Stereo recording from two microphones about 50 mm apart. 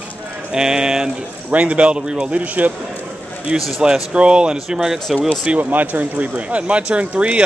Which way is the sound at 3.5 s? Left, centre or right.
Centre.